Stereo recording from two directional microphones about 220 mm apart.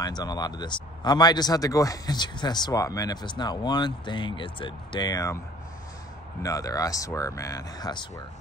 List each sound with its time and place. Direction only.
0.0 s speech: 20° left (ahead or behind)
6.4 s speech: 15° left (ahead or behind)